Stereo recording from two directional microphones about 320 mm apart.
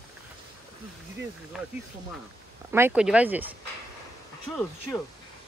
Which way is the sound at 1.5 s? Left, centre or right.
Centre.